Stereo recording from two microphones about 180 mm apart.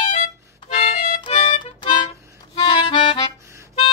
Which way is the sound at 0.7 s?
30° left (ahead or behind).